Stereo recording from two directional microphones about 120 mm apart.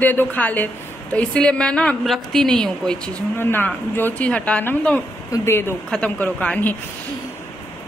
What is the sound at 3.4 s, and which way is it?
A woman's voice, 15° left (ahead or behind).